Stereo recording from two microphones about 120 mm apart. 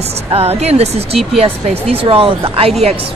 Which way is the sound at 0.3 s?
55° right (ahead or behind).